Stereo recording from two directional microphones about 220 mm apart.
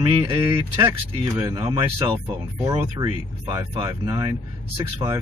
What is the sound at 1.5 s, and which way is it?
Speech, 20° right (ahead or behind).